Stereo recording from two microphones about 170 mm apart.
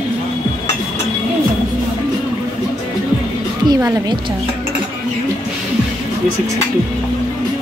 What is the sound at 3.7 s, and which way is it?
Music, 15° right (ahead or behind).